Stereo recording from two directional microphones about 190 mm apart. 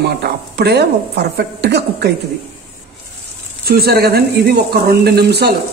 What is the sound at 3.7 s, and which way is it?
Speech, 55° right (ahead or behind).